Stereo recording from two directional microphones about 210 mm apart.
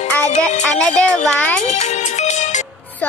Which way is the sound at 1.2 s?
5° left (ahead or behind).